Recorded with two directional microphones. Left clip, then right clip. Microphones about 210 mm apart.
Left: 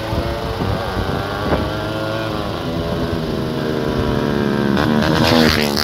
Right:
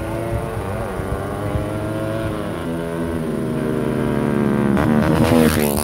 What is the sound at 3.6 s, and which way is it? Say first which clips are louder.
Vehicle: left 2 dB; 15° left (ahead or behind).